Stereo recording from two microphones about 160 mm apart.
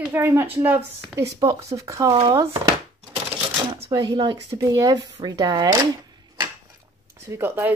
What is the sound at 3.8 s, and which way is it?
Speech, 25° right (ahead or behind).